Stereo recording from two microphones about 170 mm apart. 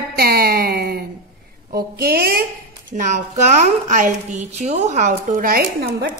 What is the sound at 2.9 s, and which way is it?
A woman's voice, 45° right (ahead or behind).